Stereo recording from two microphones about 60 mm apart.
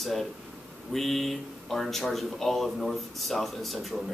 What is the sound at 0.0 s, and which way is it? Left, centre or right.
A man's voice, centre.